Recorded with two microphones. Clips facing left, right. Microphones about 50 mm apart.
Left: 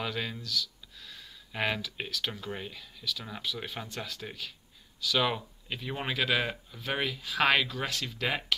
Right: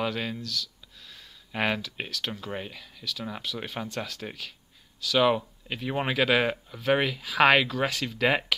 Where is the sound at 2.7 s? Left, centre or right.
Right.